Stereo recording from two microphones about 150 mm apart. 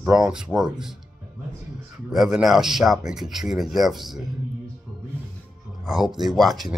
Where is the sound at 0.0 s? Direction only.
5° right (ahead or behind).